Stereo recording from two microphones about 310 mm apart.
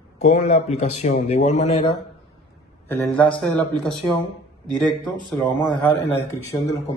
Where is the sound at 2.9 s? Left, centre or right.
Centre.